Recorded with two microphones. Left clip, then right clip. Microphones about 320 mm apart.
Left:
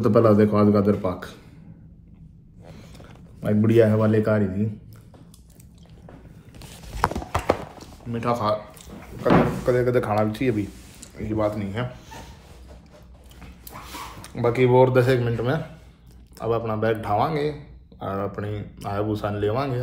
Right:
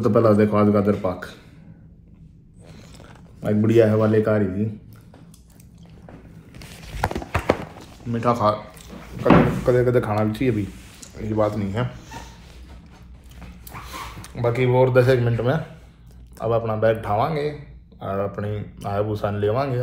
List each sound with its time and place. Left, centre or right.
0.0 s speech: centre
3.4 s speech: centre
7.2 s clip-clop: right
8.1 s speech: centre
9.2 s speech: right
9.8 s speech: centre
13.4 s a sound: centre
16.3 s speech: centre